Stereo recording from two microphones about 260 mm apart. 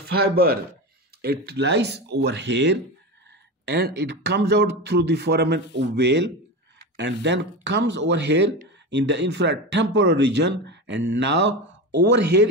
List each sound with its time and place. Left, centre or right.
0.1 s speech: right